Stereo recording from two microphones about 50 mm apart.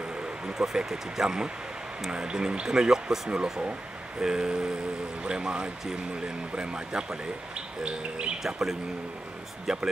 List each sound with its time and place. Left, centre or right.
0.6 s speech: centre
4.2 s speech: centre
8.4 s speech: centre